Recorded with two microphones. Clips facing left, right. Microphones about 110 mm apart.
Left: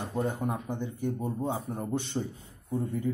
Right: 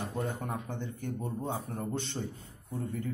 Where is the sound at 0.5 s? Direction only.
15° left (ahead or behind).